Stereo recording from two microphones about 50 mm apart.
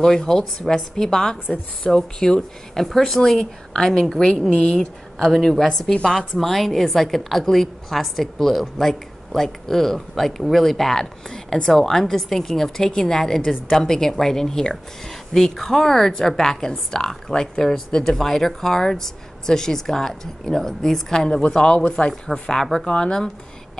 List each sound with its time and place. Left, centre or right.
0.0 s a woman's voice: centre
22.1 s a woman's voice: centre